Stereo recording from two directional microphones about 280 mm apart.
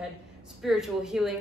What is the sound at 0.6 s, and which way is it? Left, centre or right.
Speech, centre.